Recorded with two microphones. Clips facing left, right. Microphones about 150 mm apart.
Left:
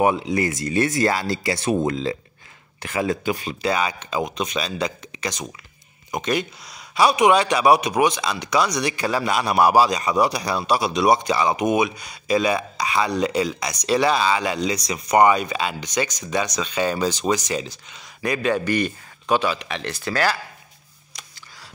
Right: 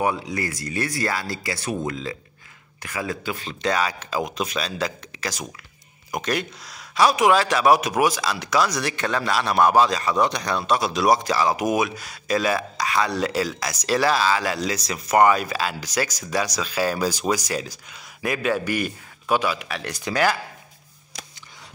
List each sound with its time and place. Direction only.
0.0 s a man's voice: 20° left (ahead or behind); by 20.3 s 15° right (ahead or behind)